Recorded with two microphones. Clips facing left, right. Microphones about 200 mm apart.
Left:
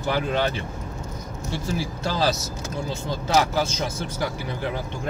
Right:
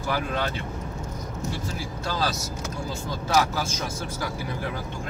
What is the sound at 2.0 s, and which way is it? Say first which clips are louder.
Speech: left 3 dB; 25° left (ahead or behind).